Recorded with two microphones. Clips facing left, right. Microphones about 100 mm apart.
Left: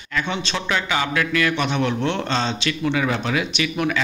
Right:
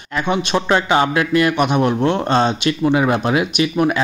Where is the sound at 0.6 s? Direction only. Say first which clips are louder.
Right 7 dB; 35° right (ahead or behind).